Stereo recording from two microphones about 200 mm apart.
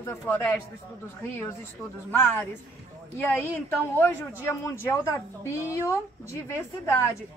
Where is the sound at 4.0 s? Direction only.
10° left (ahead or behind).